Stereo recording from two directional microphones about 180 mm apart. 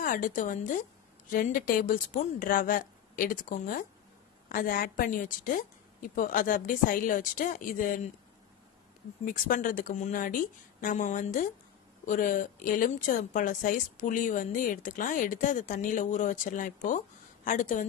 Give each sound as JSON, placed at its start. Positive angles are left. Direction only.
{"t": 0.0, "sound": "a woman's voice", "side_deg": 45}
{"t": 9.2, "sound": "a woman's voice", "side_deg": 50}